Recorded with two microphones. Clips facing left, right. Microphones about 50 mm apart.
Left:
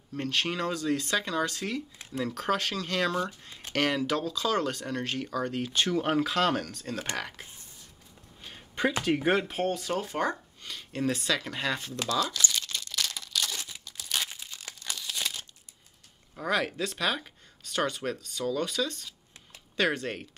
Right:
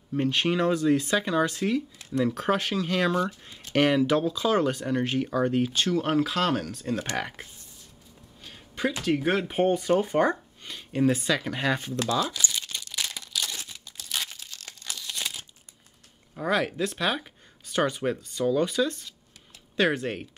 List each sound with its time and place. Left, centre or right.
0.1 s speech: centre
5.7 s speech: centre
8.4 s a sound: centre
9.0 s speech: centre
9.5 s speech: centre
12.2 s crumpling: centre
14.3 s crumpling: centre
16.3 s speech: centre